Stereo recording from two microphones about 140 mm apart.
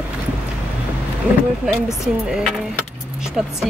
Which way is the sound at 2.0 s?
Centre (ahead or behind).